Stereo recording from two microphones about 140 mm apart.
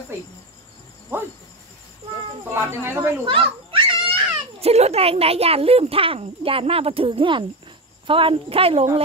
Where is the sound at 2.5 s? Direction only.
15° right (ahead or behind).